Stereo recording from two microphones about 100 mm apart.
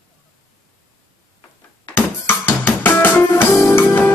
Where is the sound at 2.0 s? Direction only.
20° left (ahead or behind).